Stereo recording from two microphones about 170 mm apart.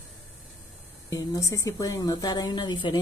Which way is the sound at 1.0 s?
20° left (ahead or behind).